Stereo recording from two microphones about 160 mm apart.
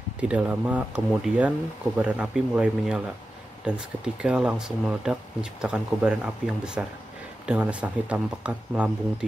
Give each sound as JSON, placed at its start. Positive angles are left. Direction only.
{"t": 0.2, "sound": "speech", "side_deg": -10}